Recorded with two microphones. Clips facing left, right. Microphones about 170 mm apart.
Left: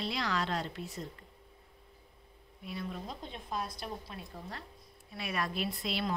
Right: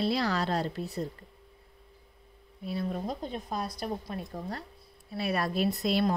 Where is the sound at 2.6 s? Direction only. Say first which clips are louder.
Right 7 dB; 35° right (ahead or behind).